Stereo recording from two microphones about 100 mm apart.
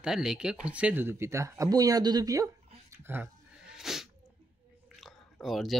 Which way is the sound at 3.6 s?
5° right (ahead or behind).